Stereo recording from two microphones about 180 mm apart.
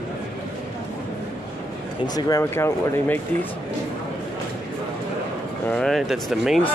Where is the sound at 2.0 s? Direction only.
20° left (ahead or behind).